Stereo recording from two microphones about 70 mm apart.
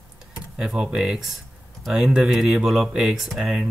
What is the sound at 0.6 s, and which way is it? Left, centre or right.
Speech, centre.